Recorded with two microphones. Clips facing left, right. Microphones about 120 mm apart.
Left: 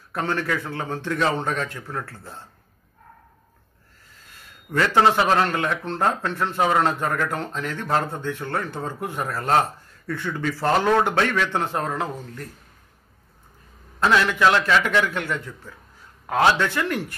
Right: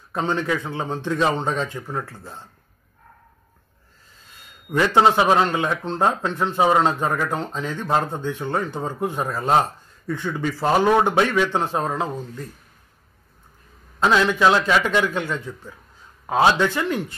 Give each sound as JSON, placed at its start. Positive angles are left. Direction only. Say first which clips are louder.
{"t": 0.1, "sound": "speech", "louder": "right 2 dB", "side_deg": -20}
{"t": 4.3, "sound": "speech", "louder": "right 3 dB", "side_deg": -15}
{"t": 13.9, "sound": "a man's voice", "louder": "right 2 dB", "side_deg": -15}